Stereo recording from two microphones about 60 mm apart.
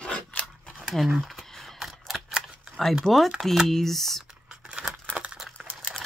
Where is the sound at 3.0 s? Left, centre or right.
Centre.